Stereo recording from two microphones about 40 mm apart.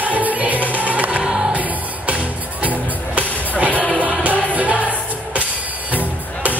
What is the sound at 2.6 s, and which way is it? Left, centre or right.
Music, right.